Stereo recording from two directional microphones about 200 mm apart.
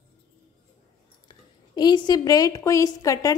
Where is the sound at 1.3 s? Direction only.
20° left (ahead or behind).